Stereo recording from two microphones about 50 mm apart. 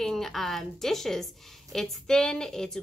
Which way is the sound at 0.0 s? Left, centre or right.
Centre.